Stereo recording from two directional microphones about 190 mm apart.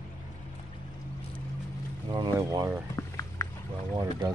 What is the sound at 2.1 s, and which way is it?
Speech, 20° right (ahead or behind).